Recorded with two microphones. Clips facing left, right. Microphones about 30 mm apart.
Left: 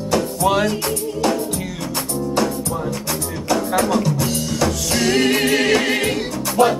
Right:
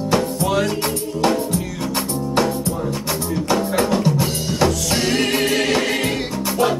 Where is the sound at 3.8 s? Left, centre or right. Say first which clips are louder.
Even; right.